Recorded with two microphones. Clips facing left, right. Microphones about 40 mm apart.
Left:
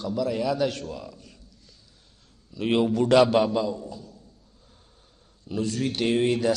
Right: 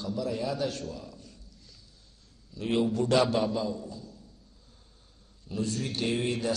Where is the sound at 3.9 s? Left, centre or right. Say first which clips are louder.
Left 3 dB; left.